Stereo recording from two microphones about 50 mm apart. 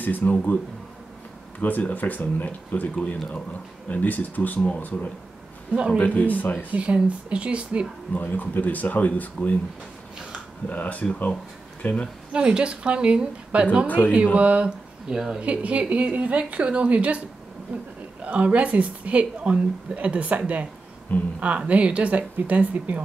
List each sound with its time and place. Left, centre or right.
0.0 s speech: left
1.6 s speech: left
5.9 s speech: left
6.7 s a woman's voice: right
8.2 s speech: left
10.7 s speech: left
12.3 s a woman's voice: right
13.8 s speech: left
14.3 s a woman's voice: right
18.2 s a woman's voice: right
21.1 s speech: left
21.5 s a woman's voice: right